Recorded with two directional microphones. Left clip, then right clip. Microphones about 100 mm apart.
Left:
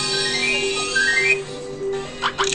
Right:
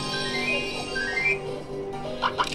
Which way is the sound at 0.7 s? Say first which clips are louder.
Left 9 dB; 10° left (ahead or behind).